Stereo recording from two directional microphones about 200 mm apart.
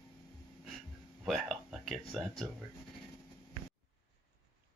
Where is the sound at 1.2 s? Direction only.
Centre (ahead or behind).